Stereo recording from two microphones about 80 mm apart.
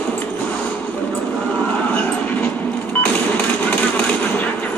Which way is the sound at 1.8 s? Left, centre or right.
Centre.